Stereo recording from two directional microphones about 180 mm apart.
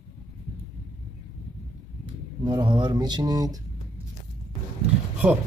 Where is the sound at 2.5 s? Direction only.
25° right (ahead or behind).